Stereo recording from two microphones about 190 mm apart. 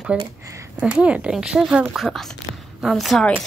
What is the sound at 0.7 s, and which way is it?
A woman's voice, 5° right (ahead or behind).